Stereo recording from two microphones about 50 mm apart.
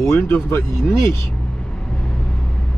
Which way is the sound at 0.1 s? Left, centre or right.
Left.